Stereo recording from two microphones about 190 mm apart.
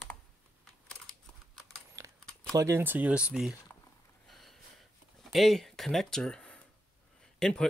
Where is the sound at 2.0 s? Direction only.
15° right (ahead or behind).